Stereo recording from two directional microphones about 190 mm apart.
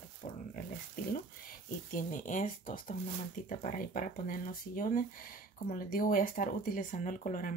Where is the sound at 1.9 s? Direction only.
45° left (ahead or behind).